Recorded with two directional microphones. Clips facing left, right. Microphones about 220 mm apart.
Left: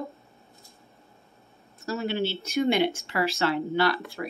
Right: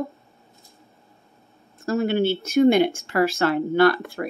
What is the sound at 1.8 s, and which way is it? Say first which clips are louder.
Speech: right 7 dB; 55° right (ahead or behind).